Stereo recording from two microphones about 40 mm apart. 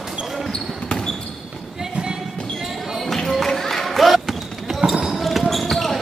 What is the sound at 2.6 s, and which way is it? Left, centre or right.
Basketball bounce, centre.